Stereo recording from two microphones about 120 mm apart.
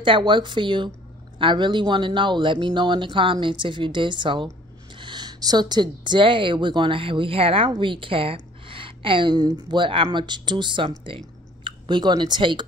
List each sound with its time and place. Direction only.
0.0 s a woman's voice: 45° right (ahead or behind)